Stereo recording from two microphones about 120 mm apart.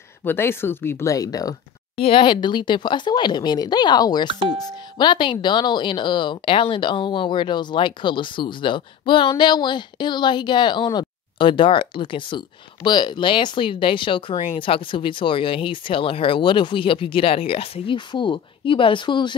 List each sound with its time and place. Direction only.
0.2 s speech: 20° left (ahead or behind)
2.0 s a woman's voice: 45° left (ahead or behind)
4.3 s speech: 50° right (ahead or behind)
4.9 s a woman's voice: 40° left (ahead or behind)
17.9 s speech: 40° left (ahead or behind)